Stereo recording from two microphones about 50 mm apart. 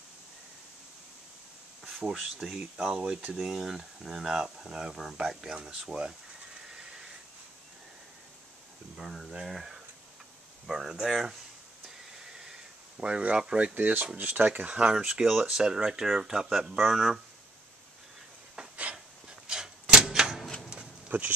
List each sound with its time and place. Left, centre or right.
1.9 s speech: centre; by 3.3 s right
3.3 s speech: centre
6.7 s a sound: centre
8.9 s speech: centre
12.2 s a sound: centre
13.7 s speech: right; by 17.2 s centre
18.8 s a sound: right
20.4 s shuffling cards: centre
21.1 s speech: right